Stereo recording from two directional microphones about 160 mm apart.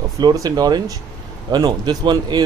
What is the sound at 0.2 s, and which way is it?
Speech, 25° right (ahead or behind).